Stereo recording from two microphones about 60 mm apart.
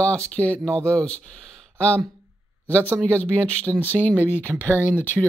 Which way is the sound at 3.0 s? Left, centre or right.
Left.